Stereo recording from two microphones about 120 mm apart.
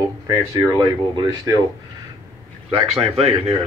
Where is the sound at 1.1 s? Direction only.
40° right (ahead or behind).